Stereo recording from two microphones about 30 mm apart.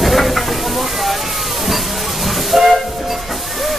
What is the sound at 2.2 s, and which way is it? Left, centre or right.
Train, centre.